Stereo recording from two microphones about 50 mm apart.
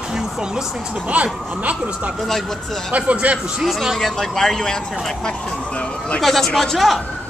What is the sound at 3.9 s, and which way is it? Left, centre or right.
Speech, centre.